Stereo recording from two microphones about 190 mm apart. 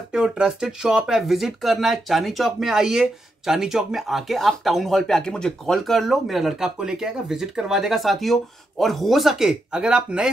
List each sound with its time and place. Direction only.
0.1 s speech: 5° right (ahead or behind)